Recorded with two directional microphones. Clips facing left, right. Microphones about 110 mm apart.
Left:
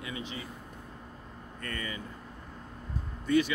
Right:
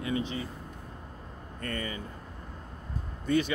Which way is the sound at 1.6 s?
35° right (ahead or behind).